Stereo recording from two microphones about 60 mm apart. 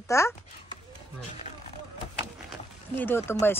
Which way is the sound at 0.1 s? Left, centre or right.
Left.